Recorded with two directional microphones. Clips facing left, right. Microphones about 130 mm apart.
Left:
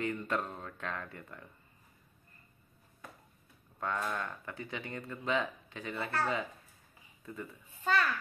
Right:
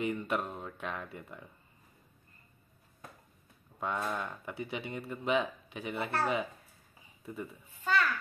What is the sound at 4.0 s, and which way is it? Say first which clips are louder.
Speech: right 1 dB; 10° right (ahead or behind).